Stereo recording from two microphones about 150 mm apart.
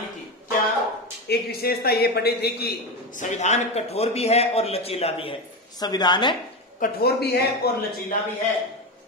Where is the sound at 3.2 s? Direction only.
50° left (ahead or behind); by 6.3 s 30° left (ahead or behind).